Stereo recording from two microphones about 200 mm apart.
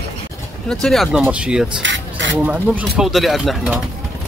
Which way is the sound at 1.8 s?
65° right (ahead or behind).